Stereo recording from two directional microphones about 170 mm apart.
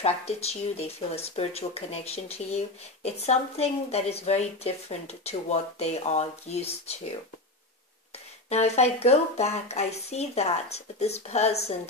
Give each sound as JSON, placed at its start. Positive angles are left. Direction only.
{"t": 0.0, "sound": "speech", "side_deg": 35}
{"t": 8.5, "sound": "speech", "side_deg": 40}